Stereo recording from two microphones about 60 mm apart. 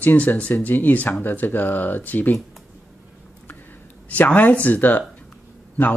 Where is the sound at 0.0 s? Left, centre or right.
Left.